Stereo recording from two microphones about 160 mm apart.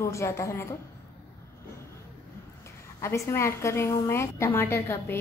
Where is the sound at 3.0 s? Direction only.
15° left (ahead or behind).